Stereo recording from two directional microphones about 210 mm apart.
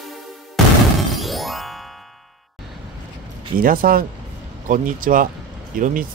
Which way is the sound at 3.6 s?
40° right (ahead or behind).